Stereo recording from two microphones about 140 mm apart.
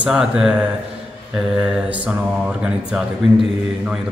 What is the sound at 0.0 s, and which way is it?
Speech, 5° right (ahead or behind).